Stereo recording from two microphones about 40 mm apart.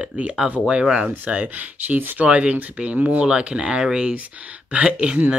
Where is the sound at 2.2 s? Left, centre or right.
Right.